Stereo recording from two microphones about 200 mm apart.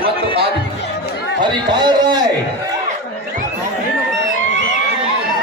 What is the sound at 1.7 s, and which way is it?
Speech, 20° right (ahead or behind).